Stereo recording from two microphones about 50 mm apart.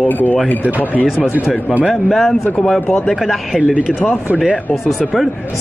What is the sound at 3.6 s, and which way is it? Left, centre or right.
Speech, right.